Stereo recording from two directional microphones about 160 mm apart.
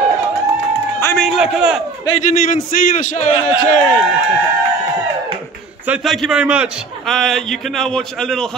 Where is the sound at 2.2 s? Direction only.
60° left (ahead or behind).